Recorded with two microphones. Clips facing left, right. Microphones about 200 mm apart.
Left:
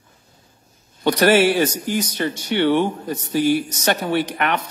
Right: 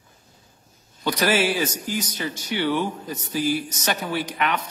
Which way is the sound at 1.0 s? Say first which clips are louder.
Left 7 dB; 60° left (ahead or behind).